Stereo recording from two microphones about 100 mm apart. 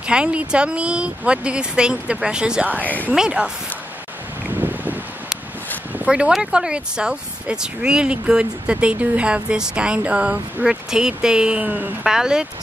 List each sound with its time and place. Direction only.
0.0 s speech: 10° right (ahead or behind)
2.8 s speech: 15° left (ahead or behind)
3.1 s speech: 10° right (ahead or behind)
4.5 s a sound: 15° right (ahead or behind)
5.9 s speech: 10° right (ahead or behind)